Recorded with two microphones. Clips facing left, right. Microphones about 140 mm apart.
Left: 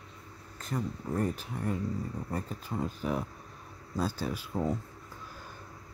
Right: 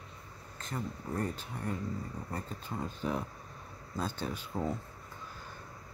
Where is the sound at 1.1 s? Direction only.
10° left (ahead or behind).